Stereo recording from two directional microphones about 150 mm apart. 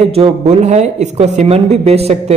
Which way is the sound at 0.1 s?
45° right (ahead or behind).